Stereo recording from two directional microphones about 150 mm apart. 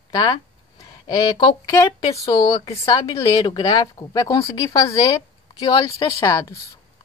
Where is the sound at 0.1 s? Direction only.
30° left (ahead or behind).